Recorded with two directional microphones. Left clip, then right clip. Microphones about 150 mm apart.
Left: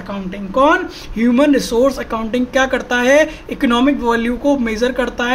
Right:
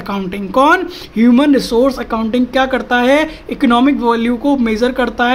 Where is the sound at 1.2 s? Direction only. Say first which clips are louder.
Right 2 dB; 20° right (ahead or behind).